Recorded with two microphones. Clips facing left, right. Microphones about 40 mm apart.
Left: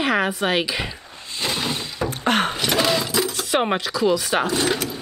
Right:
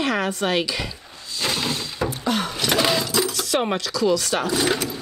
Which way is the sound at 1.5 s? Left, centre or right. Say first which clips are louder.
Even; left.